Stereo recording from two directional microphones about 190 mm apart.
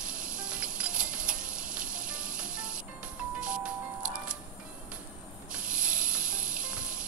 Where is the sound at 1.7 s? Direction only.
5° right (ahead or behind).